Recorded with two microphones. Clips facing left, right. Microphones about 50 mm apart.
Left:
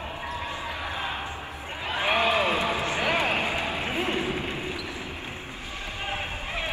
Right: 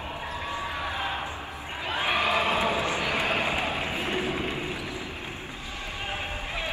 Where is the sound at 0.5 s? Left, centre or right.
Right.